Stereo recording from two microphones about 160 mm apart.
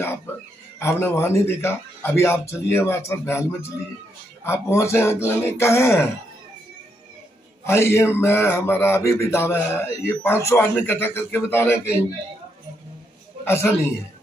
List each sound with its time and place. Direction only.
0.7 s a man's voice: 15° left (ahead or behind)
4.5 s a man's voice: 15° left (ahead or behind)
7.6 s a man's voice: 15° left (ahead or behind)
13.5 s a man's voice: 15° left (ahead or behind)